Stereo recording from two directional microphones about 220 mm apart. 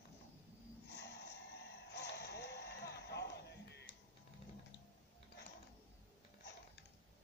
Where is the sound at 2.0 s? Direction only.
50° left (ahead or behind).